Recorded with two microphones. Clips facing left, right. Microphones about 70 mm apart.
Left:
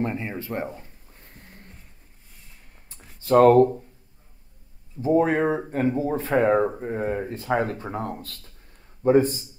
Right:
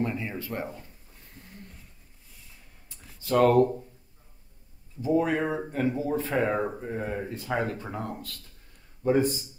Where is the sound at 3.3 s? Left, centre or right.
Left.